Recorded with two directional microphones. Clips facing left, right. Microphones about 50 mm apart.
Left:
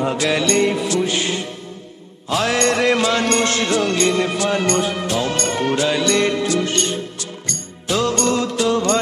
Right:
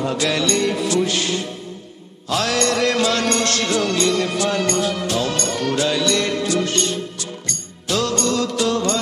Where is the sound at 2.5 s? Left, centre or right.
Left.